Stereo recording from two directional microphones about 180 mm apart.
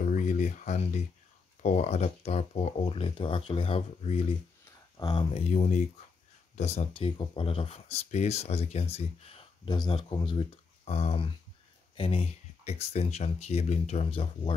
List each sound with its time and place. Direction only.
0.0 s a sound: 45° left (ahead or behind)
1.6 s speech: 40° left (ahead or behind)
4.9 s speech: 25° left (ahead or behind)